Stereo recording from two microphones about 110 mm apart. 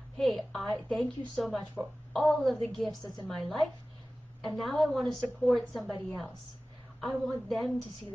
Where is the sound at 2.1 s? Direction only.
Centre (ahead or behind).